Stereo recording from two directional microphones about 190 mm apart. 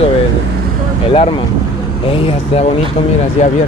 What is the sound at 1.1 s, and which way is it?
Speech, 30° left (ahead or behind).